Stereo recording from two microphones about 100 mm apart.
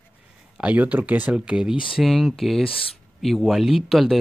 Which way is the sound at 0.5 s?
15° right (ahead or behind).